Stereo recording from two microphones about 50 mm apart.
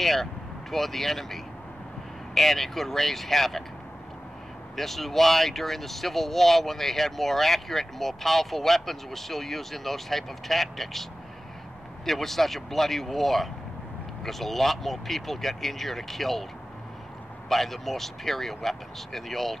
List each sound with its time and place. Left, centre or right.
0.0 s speech: centre
4.7 s speech: centre
17.5 s speech: centre